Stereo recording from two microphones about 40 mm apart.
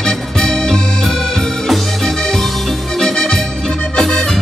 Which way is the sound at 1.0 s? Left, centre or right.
Centre.